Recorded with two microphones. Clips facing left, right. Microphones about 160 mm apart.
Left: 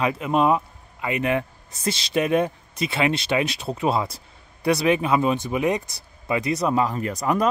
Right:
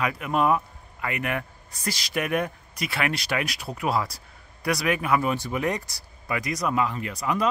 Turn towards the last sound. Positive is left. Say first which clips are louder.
# left 4 dB
turn(degrees=45)  # may be behind; listen again after turning